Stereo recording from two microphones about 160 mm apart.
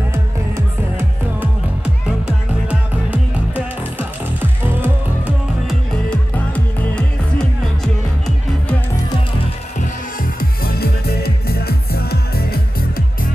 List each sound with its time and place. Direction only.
0.1 s music: 15° right (ahead or behind)
5.7 s music: 10° left (ahead or behind)
10.6 s music: 75° left (ahead or behind)